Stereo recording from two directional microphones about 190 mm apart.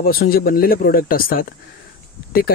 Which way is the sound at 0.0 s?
50° left (ahead or behind).